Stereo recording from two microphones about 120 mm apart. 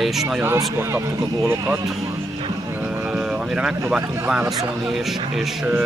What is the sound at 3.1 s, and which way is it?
Vehicle, 10° right (ahead or behind).